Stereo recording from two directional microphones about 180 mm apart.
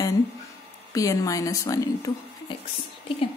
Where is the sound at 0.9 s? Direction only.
20° left (ahead or behind).